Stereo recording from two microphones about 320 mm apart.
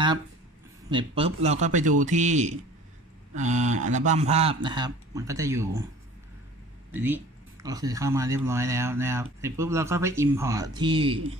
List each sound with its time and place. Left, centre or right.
0.8 s a man's voice: centre
6.9 s speech: centre